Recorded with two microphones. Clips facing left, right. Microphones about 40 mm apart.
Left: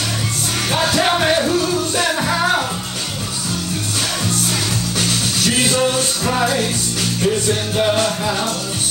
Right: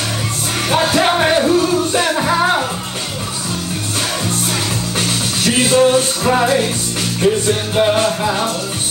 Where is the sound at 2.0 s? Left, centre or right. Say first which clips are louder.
Right 3 dB; centre.